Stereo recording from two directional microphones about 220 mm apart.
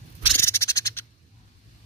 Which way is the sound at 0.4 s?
10° left (ahead or behind).